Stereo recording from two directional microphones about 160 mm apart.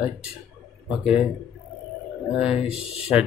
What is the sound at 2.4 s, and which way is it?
Speech, 5° right (ahead or behind).